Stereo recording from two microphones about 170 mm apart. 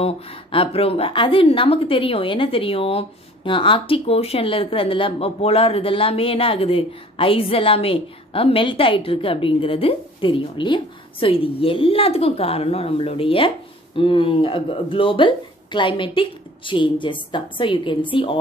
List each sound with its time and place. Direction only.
0.0 s a woman's voice: 35° left (ahead or behind)